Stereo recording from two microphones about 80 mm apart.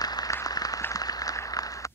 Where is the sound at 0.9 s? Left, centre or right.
Left.